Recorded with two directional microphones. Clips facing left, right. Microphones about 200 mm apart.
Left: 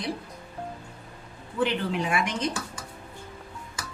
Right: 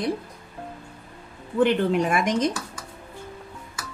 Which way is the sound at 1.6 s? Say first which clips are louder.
Right 6 dB; 50° right (ahead or behind).